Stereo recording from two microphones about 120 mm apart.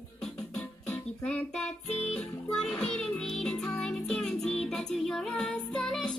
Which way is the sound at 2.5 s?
5° left (ahead or behind).